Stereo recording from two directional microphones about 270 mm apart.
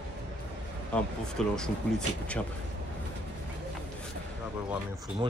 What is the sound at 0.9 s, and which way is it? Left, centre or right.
A man's voice, centre.